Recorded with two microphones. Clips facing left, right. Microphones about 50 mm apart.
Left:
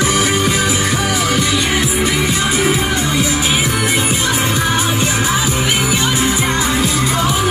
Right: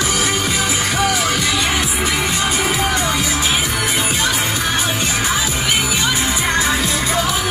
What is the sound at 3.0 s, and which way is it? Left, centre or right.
Music, left.